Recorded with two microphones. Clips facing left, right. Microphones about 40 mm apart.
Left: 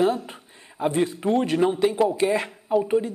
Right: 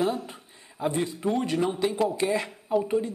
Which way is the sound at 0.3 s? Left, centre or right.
Centre.